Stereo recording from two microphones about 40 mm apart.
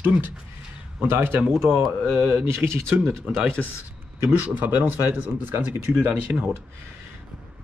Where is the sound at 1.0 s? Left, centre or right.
Right.